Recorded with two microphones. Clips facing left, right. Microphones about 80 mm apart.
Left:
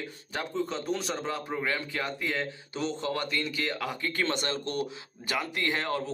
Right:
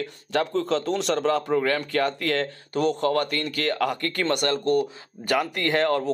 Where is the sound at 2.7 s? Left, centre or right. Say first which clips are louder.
Right 10 dB; right.